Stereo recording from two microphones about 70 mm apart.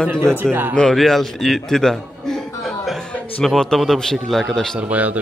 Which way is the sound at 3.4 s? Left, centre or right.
Centre.